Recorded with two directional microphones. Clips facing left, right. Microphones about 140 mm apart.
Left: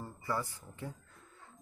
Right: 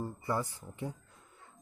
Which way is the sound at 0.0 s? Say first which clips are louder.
Right 3 dB; 20° right (ahead or behind).